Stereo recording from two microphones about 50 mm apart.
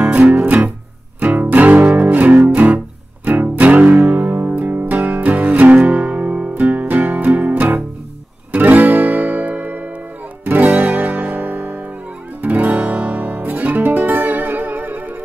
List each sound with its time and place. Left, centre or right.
0.3 s music: right
12.4 s guitar: right